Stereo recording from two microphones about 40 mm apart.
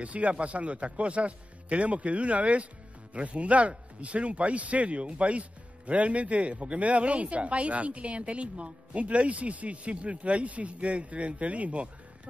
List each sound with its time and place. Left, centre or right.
0.0 s a man's voice: right